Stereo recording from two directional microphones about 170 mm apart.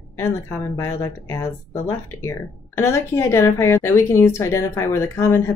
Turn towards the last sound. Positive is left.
turn(degrees=15)  # may be behind; listen again after turning